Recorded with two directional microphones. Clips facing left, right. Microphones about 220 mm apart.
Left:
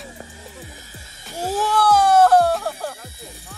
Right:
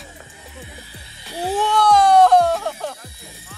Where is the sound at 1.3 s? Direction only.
45° left (ahead or behind).